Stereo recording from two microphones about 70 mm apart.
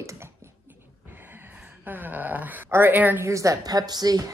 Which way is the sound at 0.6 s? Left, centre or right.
Right.